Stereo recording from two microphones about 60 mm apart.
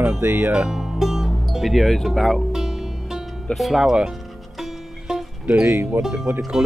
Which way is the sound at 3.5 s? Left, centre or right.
Centre.